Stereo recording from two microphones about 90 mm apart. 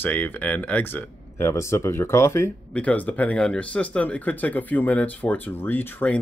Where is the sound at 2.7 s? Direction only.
15° left (ahead or behind).